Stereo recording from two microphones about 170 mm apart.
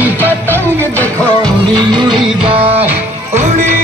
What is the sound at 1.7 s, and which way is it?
Music, 25° right (ahead or behind).